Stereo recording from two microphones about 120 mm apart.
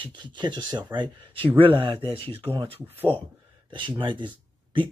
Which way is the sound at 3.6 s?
45° right (ahead or behind).